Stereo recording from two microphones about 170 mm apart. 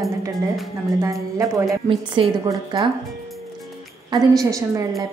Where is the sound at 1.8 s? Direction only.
30° right (ahead or behind).